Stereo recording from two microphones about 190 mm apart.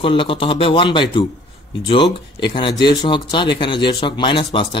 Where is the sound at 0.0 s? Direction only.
25° left (ahead or behind).